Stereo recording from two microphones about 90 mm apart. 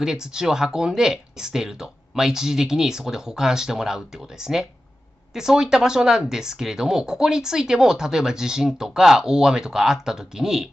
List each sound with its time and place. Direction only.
0.0 s speech: 5° right (ahead or behind)